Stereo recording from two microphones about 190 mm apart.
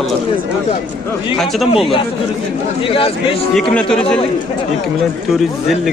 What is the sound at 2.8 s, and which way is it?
Speech, 30° left (ahead or behind).